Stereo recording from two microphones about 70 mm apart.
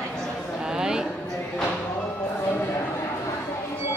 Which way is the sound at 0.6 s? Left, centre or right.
Centre.